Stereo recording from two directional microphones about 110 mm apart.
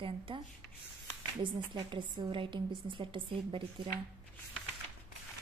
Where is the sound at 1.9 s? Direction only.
50° right (ahead or behind).